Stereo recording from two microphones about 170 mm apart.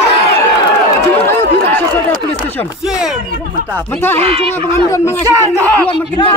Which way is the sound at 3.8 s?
10° left (ahead or behind).